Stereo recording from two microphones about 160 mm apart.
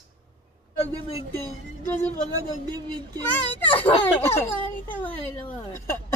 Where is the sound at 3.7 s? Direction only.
10° left (ahead or behind).